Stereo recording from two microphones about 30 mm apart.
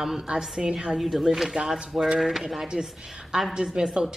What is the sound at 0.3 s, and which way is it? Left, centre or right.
Speech, right.